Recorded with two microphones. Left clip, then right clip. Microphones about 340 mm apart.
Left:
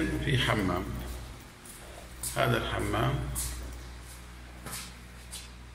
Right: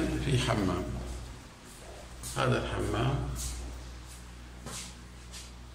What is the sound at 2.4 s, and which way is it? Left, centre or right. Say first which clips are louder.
Speech: left 2 dB; centre.